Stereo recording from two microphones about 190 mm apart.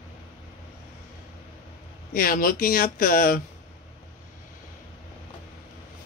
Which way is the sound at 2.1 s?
50° left (ahead or behind).